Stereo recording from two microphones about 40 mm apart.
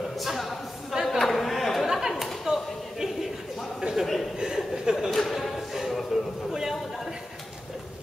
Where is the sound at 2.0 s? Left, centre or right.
Centre.